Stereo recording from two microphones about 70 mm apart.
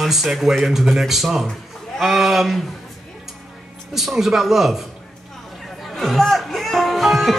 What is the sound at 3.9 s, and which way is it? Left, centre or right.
Speech, centre.